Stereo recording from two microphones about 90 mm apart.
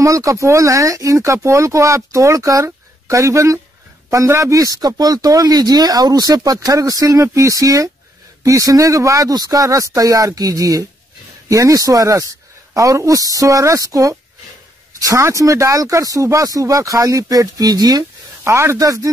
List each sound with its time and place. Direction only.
0.0 s a man's voice: 35° right (ahead or behind)
18.4 s a man's voice: 30° right (ahead or behind)